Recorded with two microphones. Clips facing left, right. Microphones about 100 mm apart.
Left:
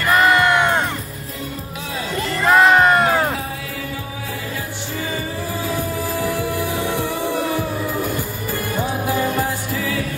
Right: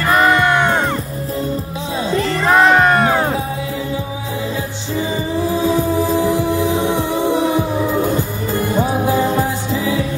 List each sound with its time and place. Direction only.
0.1 s music: centre (ahead or behind)
2.4 s music: centre (ahead or behind)
5.5 s music: 20° right (ahead or behind)